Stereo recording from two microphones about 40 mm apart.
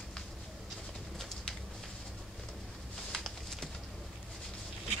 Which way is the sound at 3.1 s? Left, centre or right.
Centre.